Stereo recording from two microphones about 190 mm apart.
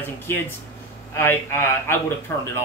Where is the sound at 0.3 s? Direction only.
15° left (ahead or behind).